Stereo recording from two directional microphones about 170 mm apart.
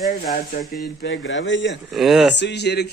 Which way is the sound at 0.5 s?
90° left.